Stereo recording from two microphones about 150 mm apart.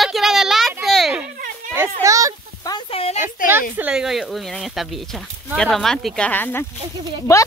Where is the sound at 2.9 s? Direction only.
40° left (ahead or behind).